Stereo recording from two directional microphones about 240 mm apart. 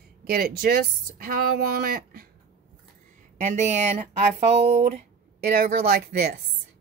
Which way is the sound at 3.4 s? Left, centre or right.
Right.